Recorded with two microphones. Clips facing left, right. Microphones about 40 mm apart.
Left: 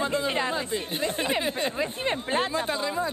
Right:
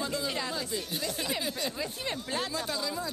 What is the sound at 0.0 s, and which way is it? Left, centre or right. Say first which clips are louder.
Speech: left 7 dB; left.